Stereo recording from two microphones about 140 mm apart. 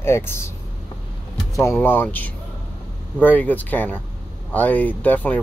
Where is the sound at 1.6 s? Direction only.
15° left (ahead or behind).